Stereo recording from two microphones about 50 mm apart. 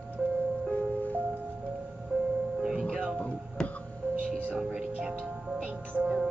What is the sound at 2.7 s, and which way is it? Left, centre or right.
Music, centre.